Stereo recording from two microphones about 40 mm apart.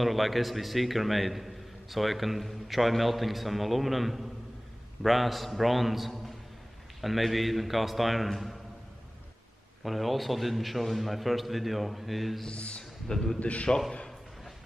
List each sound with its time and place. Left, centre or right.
0.0 s a man's voice: centre
9.8 s a man's voice: centre
12.4 s speech: left
13.1 s a man's voice: centre
13.4 s a man's voice: left